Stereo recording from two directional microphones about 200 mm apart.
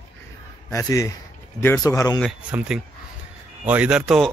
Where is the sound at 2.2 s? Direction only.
5° right (ahead or behind).